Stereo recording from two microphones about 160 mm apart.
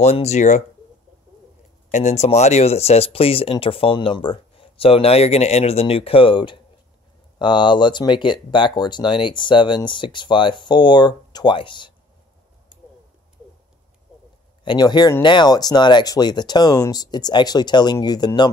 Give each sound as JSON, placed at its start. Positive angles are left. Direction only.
{"t": 0.0, "sound": "speech", "side_deg": 45}
{"t": 1.9, "sound": "speech", "side_deg": 45}
{"t": 14.6, "sound": "speech", "side_deg": 25}